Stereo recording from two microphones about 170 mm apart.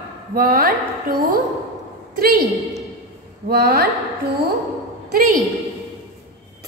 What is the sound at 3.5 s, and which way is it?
Speech, 65° right (ahead or behind).